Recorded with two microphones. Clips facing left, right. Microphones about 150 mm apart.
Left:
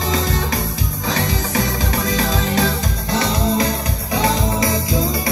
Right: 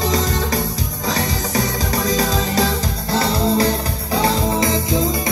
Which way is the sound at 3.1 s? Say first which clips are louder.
Right 1 dB; 35° right (ahead or behind).